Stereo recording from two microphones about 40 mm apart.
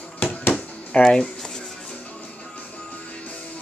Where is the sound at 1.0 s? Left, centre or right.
Centre.